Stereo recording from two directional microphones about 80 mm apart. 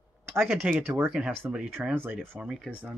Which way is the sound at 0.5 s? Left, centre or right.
Centre.